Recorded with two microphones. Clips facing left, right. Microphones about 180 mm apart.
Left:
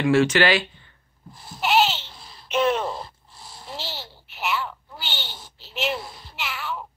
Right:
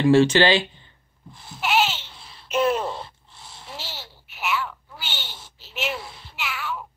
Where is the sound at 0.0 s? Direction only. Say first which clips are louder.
Right 2 dB; 30° right (ahead or behind).